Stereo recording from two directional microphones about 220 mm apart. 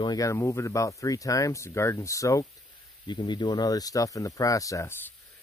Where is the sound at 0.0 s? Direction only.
15° left (ahead or behind).